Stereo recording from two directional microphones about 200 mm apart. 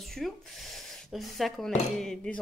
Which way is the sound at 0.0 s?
Centre (ahead or behind).